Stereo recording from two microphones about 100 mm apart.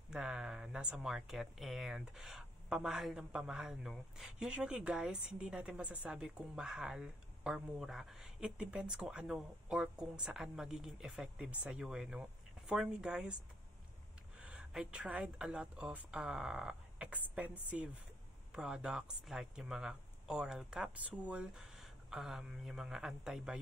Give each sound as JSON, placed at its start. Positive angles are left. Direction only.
{"t": 0.1, "sound": "speech", "side_deg": -5}
{"t": 14.4, "sound": "speech", "side_deg": -10}
{"t": 18.5, "sound": "speech", "side_deg": -5}